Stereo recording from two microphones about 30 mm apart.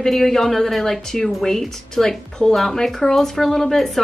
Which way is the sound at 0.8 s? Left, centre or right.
Centre.